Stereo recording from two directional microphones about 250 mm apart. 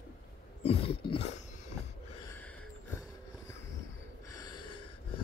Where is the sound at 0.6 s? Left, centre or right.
Left.